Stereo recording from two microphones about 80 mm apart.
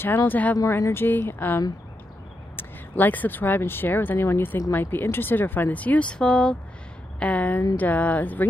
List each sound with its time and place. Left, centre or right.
0.0 s speech: left
0.6 s a woman's voice: left